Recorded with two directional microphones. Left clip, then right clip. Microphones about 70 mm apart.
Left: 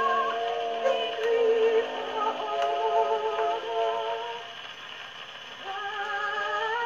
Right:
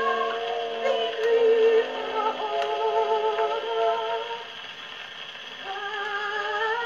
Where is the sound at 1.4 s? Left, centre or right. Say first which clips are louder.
Right 4 dB; centre.